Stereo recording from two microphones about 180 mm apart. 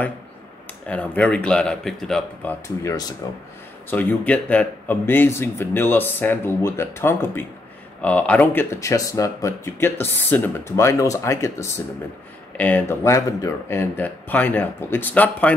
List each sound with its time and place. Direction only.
0.8 s speech: 5° left (ahead or behind)
2.8 s speech: 20° left (ahead or behind)